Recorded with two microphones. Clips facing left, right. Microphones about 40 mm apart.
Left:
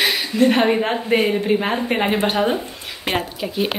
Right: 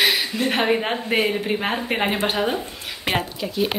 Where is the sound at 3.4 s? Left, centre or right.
Centre.